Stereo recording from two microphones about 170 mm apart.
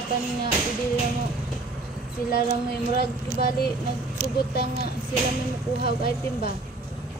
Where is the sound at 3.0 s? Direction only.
65° left (ahead or behind).